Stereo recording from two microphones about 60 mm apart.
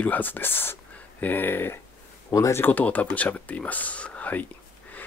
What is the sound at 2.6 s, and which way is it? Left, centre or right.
Speech, left.